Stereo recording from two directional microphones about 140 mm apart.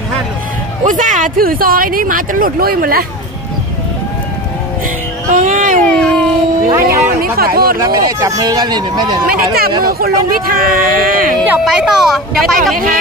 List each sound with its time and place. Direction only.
0.8 s speech: 65° right (ahead or behind); by 3.1 s 90° right
5.3 s speech: 65° right (ahead or behind)
5.9 s cat: 5° left (ahead or behind)
6.7 s music: 20° right (ahead or behind)
7.2 s speech: 90° right
7.8 s speech: 25° right (ahead or behind)
9.8 s speech: 90° right
11.4 s speech: 5° right (ahead or behind)